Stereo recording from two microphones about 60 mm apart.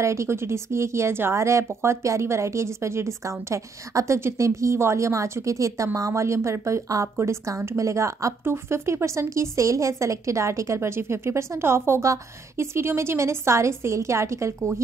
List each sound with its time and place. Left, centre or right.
0.0 s a woman's voice: right
8.5 s a woman's voice: right